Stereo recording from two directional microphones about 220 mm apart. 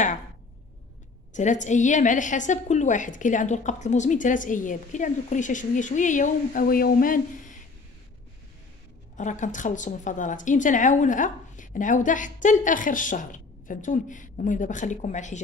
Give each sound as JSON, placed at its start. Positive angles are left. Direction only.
{"t": 1.3, "sound": "a woman's voice", "side_deg": 35}
{"t": 9.1, "sound": "a woman's voice", "side_deg": 35}